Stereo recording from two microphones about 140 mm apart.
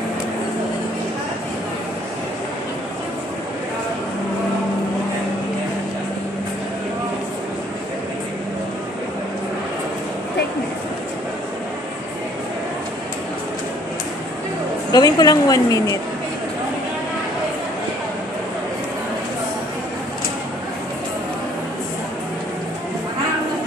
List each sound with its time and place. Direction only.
14.9 s a woman's voice: 30° left (ahead or behind)